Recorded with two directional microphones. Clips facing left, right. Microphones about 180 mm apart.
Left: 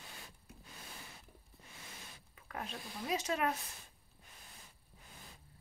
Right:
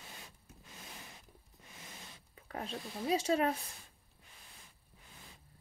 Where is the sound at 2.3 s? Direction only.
30° right (ahead or behind).